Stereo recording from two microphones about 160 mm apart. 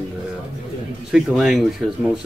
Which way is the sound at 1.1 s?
5° right (ahead or behind).